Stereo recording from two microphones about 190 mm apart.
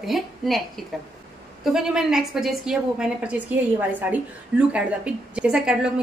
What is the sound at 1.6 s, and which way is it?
A woman's voice, centre (ahead or behind).